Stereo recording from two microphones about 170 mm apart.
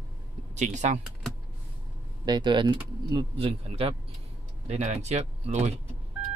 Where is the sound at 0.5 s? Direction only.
45° right (ahead or behind).